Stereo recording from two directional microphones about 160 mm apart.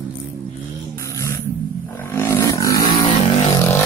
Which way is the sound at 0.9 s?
20° left (ahead or behind).